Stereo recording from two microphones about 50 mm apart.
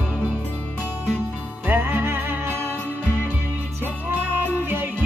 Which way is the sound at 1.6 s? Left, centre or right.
Right.